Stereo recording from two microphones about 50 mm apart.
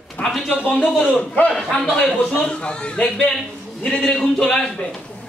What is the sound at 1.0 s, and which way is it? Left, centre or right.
A man's voice, left.